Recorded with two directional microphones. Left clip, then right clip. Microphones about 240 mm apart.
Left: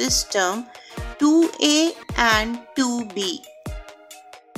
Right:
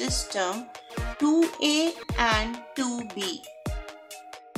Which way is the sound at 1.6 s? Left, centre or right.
Left.